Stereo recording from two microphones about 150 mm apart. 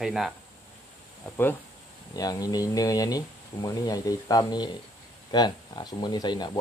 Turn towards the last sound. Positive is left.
turn(degrees=30)  # may be behind; listen again after turning